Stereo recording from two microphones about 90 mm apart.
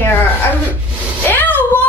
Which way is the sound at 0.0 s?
20° left (ahead or behind).